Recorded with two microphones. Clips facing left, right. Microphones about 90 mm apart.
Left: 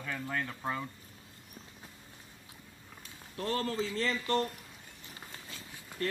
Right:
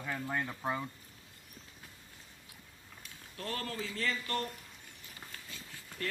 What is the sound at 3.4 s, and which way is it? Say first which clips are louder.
A man's voice: left 6 dB; 25° left (ahead or behind).